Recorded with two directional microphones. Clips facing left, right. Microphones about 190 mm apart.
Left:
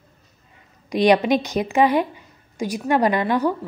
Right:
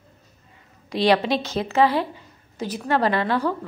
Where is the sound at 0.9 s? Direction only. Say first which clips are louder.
Left 3 dB; 15° left (ahead or behind).